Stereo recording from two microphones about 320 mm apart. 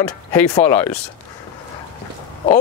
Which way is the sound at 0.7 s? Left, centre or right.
Centre.